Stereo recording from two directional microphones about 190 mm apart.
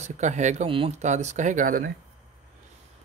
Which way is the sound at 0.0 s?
40° right (ahead or behind).